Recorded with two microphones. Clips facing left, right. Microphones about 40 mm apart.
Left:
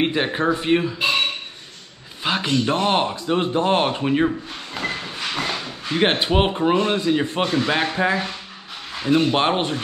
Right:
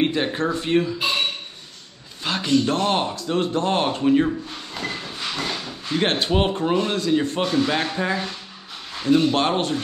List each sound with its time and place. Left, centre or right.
0.0 s speech: centre
2.2 s speech: left